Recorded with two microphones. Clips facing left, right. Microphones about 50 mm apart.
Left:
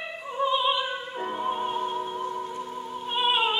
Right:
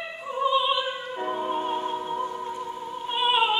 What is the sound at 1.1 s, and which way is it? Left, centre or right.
Music, centre.